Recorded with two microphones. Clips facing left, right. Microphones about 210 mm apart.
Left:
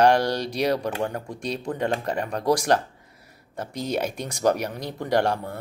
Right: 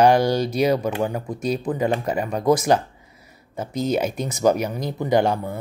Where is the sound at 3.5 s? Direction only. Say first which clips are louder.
Right 5 dB; 5° right (ahead or behind).